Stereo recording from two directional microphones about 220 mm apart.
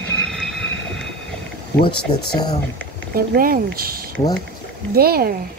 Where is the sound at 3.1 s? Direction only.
40° right (ahead or behind).